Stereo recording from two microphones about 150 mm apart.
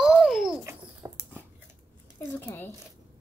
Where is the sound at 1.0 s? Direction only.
20° right (ahead or behind).